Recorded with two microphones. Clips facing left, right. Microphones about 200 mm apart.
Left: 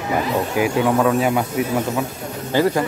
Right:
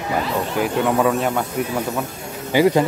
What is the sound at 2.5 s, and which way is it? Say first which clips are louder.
Speech: right 3 dB; 15° right (ahead or behind).